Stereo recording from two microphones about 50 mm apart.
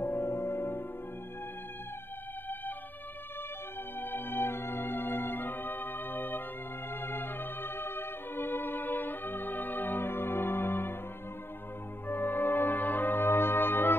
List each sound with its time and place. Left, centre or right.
0.0 s music: left
4.0 s organ: left
6.9 s music: left
12.1 s brass instrument: left